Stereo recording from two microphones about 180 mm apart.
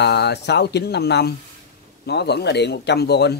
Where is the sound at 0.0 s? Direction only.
70° left (ahead or behind).